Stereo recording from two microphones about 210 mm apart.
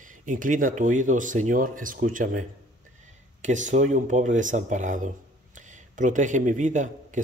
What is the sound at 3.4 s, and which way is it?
Speech, 35° right (ahead or behind).